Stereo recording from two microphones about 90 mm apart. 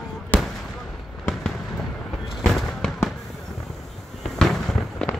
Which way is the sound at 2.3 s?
Centre (ahead or behind).